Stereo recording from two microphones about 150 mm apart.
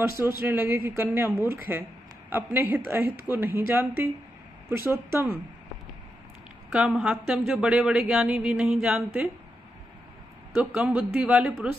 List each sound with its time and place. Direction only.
0.0 s a man's voice: 20° right (ahead or behind)
6.7 s a woman's voice: 5° right (ahead or behind)
10.5 s a man's voice: 5° right (ahead or behind)